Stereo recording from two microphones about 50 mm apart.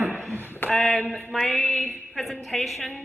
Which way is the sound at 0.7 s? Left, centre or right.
Centre.